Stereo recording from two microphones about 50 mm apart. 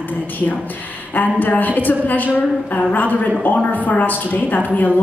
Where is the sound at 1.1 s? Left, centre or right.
Left.